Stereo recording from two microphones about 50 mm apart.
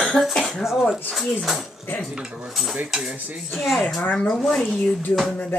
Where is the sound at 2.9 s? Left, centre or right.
Centre.